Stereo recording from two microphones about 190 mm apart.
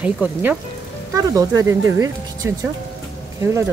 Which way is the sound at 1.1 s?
20° right (ahead or behind).